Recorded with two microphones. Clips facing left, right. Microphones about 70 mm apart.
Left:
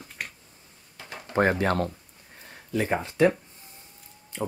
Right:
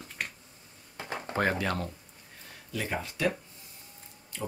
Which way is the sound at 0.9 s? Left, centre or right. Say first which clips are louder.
Right 5 dB; right.